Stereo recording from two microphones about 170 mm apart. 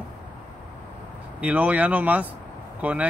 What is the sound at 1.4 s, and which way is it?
Speech, 10° right (ahead or behind).